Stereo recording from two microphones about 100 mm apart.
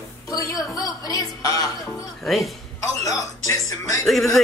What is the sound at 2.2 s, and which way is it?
Speech, centre (ahead or behind).